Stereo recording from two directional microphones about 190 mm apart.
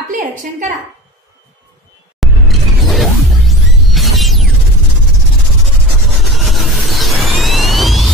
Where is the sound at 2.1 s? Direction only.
Centre (ahead or behind).